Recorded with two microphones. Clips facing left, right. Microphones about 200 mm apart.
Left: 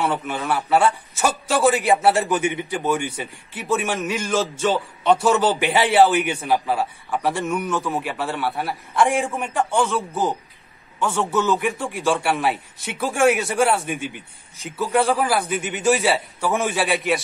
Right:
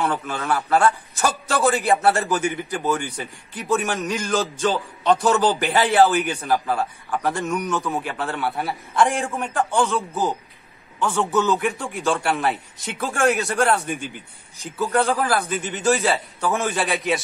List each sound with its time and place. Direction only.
0.0 s a man's voice: 5° left (ahead or behind)
9.2 s a man's voice: 15° left (ahead or behind)
9.5 s a man's voice: centre (ahead or behind)
11.2 s a man's voice: centre (ahead or behind)
15.4 s speech: 30° right (ahead or behind)
15.7 s a man's voice: 10° left (ahead or behind)